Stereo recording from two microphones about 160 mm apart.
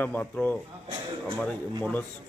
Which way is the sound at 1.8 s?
10° left (ahead or behind).